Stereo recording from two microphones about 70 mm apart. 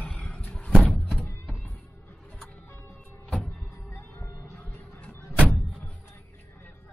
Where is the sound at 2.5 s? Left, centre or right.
Left.